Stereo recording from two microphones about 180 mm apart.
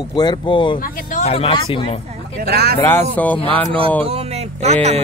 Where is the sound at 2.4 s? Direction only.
60° right (ahead or behind).